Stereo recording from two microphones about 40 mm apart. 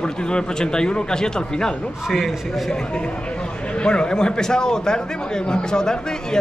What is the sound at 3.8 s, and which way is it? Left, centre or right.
A man's voice, left.